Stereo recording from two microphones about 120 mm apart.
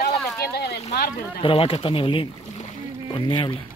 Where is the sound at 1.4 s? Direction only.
50° left (ahead or behind).